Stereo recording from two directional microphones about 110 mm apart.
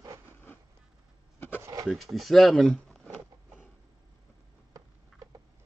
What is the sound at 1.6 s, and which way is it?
Rub, 30° right (ahead or behind).